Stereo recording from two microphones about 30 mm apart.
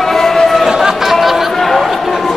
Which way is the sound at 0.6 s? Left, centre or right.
Centre.